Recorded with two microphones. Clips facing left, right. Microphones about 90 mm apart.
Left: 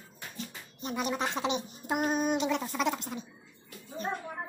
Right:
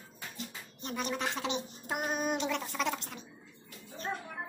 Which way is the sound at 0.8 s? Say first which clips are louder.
Left 3 dB; 10° left (ahead or behind).